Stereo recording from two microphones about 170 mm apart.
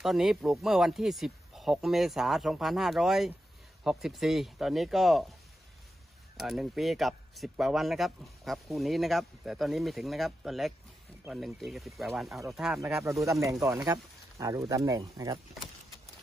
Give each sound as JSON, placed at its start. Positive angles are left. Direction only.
{"t": 0.0, "sound": "a man's voice", "side_deg": 0}
{"t": 6.3, "sound": "a man's voice", "side_deg": 0}
{"t": 13.2, "sound": "speech", "side_deg": -20}